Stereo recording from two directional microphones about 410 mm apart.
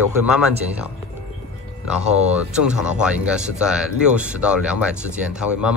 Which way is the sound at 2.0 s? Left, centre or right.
Centre.